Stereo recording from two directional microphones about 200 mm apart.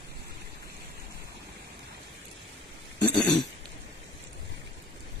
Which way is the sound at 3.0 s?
10° left (ahead or behind).